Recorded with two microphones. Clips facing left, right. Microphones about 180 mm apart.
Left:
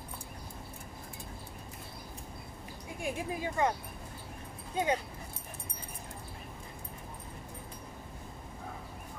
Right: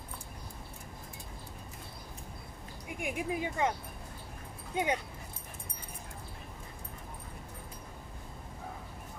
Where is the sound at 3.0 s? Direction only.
15° right (ahead or behind).